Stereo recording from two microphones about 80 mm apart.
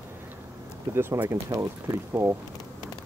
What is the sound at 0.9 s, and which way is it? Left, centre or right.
Speech, right.